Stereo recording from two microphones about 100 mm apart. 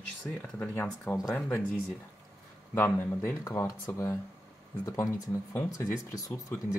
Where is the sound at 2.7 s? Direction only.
25° left (ahead or behind).